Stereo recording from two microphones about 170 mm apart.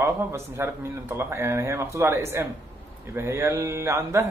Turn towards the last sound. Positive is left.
turn(degrees=-15)  # may be behind; listen again after turning